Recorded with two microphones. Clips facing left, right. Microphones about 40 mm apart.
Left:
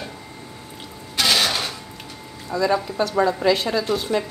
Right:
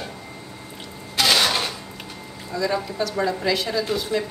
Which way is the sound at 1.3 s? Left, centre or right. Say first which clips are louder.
Right 1 dB; centre.